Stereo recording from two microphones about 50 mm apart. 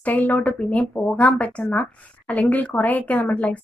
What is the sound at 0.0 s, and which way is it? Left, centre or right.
A woman's voice, left.